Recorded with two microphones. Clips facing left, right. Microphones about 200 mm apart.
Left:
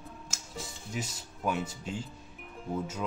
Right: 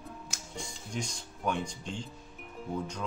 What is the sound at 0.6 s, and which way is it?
Speech, 5° left (ahead or behind).